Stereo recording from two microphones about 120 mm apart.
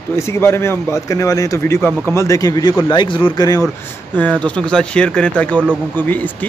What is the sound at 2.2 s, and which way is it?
Speech, 30° left (ahead or behind).